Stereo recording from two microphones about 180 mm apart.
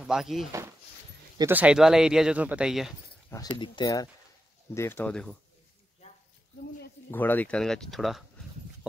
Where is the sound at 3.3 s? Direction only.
25° left (ahead or behind).